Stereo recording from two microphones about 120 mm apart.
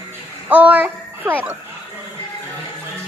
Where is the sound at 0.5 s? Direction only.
10° right (ahead or behind).